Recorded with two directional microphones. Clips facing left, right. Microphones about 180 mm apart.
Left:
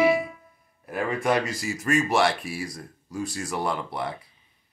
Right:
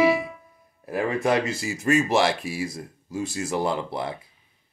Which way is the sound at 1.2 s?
25° right (ahead or behind).